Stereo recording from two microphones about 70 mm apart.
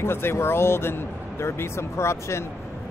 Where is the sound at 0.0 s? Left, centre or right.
Left.